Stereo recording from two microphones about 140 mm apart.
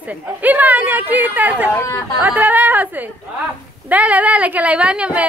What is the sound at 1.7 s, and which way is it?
Speech, 15° left (ahead or behind).